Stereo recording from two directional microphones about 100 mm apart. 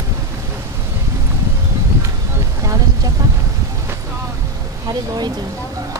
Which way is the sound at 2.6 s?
35° right (ahead or behind).